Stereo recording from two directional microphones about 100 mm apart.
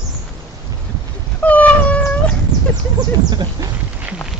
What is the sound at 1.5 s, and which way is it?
Cat, 15° left (ahead or behind).